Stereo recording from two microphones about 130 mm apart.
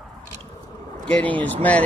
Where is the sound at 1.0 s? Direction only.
10° left (ahead or behind).